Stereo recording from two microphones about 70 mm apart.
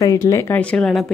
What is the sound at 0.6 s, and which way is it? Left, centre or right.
Speech, centre.